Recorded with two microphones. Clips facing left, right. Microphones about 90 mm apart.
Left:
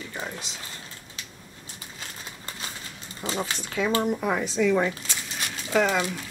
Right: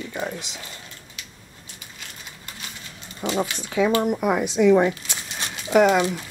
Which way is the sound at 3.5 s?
10° right (ahead or behind).